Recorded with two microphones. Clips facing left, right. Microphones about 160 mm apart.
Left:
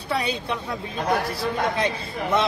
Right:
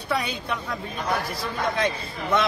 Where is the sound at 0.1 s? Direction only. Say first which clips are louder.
Left 1 dB; 30° left (ahead or behind).